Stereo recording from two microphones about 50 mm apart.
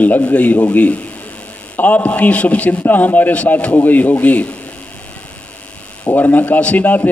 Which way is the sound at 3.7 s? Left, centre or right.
Left.